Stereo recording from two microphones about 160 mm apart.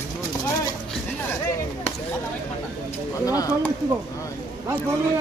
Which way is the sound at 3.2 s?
20° left (ahead or behind).